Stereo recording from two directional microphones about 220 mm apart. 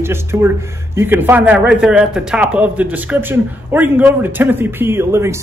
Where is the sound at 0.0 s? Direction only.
10° right (ahead or behind).